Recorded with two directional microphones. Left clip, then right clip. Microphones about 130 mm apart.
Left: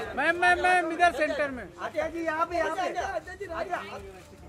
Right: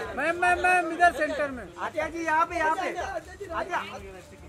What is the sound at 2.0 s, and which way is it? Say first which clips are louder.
A woman's voice: right 4 dB; 35° right (ahead or behind).